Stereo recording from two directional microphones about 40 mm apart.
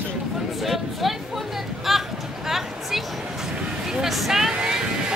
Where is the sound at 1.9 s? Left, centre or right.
Centre.